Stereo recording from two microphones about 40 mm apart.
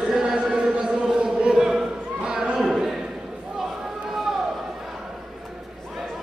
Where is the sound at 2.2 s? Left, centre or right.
Centre.